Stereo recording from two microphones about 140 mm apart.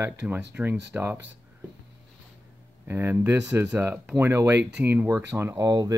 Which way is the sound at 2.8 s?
15° right (ahead or behind).